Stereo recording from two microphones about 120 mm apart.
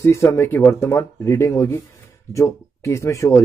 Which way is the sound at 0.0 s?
25° left (ahead or behind).